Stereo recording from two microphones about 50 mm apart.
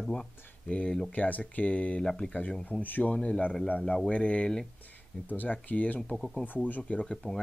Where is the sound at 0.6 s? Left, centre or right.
Left.